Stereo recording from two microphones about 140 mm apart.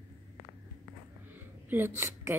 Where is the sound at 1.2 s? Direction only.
15° right (ahead or behind).